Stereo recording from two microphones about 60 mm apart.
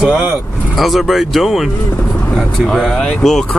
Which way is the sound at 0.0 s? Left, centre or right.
Centre.